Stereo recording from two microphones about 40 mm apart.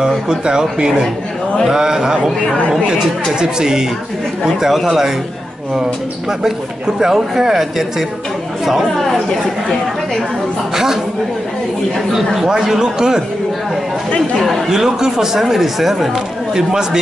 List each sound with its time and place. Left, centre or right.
0.0 s speech: centre
3.3 s speech: centre
4.6 s speech: centre
7.0 s speech: centre
8.9 s speech: centre
12.4 s speech: centre
14.7 s speech: centre
16.5 s speech: centre